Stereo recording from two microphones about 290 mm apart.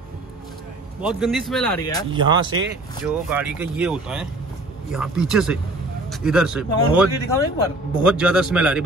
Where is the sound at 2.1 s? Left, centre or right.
Centre.